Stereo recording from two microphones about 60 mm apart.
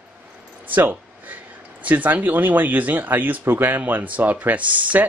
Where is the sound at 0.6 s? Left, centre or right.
Right.